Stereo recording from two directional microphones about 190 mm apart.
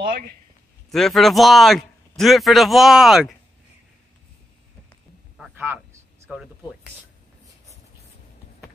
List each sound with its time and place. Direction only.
0.8 s a man's voice: centre (ahead or behind)
5.4 s a sound: 10° right (ahead or behind)
6.2 s speech: 5° right (ahead or behind)